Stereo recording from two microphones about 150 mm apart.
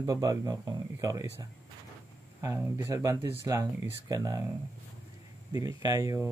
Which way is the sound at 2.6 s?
15° right (ahead or behind).